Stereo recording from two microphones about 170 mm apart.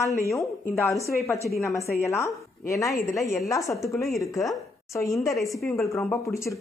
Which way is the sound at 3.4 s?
20° left (ahead or behind).